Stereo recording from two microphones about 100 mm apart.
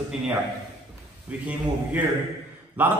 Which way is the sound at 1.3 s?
15° right (ahead or behind).